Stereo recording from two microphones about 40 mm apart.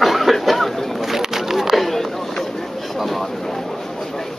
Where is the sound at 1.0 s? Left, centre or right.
Centre.